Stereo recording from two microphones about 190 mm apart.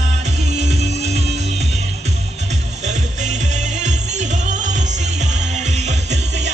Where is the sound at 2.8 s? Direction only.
40° right (ahead or behind).